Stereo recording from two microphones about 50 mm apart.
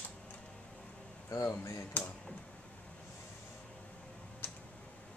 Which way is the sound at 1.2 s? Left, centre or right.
Left.